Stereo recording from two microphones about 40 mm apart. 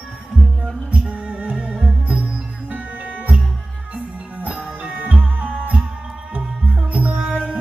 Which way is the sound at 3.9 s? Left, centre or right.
Right.